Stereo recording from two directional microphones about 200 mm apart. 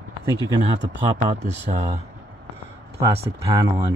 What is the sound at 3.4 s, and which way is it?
Speech, 15° right (ahead or behind).